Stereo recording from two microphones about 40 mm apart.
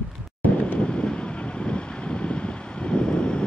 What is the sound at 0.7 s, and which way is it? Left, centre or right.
Vehicle, left.